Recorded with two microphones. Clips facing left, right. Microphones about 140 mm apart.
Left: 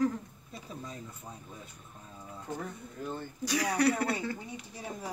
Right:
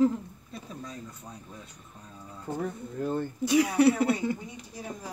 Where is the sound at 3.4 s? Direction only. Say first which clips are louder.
Right 6 dB; 25° right (ahead or behind).